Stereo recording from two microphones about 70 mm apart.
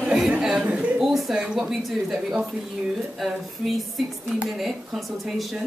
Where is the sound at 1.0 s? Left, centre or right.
Centre.